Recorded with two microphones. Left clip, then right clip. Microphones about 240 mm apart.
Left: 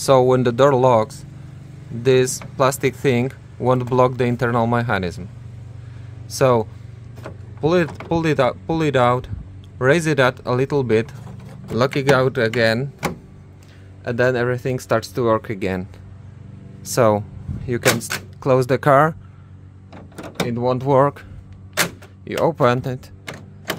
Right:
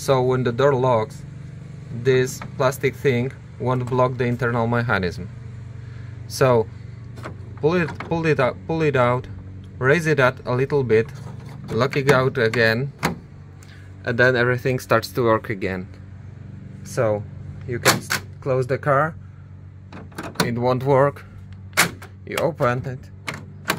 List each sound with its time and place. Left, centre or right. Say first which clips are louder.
0.0 s speech: left 5 dB; left
6.3 s speech: left 1 dB; centre
14.0 s speech: right 1 dB; centre
16.9 s speech: left 5 dB; left
18.4 s speech: left 7 dB; left
20.4 s speech: left 1 dB; centre
22.2 s speech: left 4 dB; left